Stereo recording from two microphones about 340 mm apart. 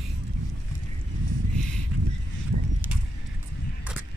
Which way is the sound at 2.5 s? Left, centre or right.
Right.